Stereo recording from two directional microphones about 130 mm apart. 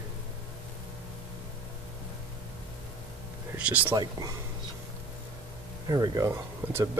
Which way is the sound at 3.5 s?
10° right (ahead or behind).